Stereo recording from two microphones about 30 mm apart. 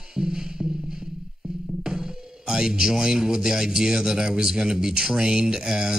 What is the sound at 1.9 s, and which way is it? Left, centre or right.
Speech, right.